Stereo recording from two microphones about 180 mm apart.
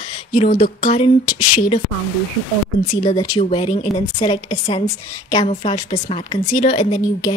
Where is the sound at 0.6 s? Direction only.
30° left (ahead or behind).